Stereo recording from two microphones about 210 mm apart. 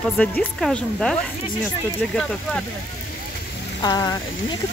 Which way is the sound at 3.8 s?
20° left (ahead or behind).